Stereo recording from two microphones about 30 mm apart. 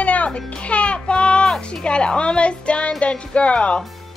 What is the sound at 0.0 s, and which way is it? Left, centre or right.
Music, left.